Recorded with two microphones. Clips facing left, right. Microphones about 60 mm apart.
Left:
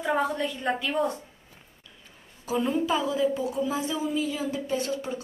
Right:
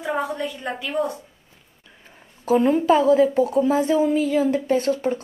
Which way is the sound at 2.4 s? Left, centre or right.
Right.